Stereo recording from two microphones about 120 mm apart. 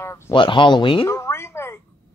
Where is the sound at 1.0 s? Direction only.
25° left (ahead or behind).